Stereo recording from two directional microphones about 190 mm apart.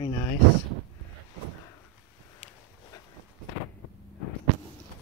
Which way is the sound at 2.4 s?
35° left (ahead or behind).